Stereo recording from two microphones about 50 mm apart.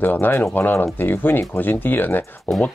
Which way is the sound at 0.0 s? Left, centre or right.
Left.